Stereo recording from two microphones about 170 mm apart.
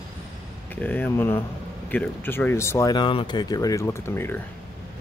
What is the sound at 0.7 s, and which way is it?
Speech, 10° left (ahead or behind).